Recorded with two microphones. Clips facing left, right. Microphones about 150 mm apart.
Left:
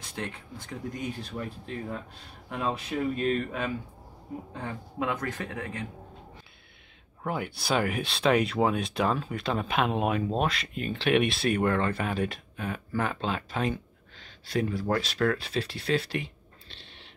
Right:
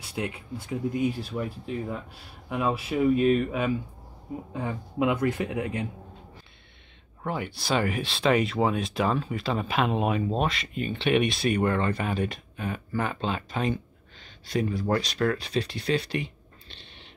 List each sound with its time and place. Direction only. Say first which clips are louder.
0.0 s speech: right 4 dB; 10° right (ahead or behind)
7.2 s speech: right 1 dB; centre (ahead or behind)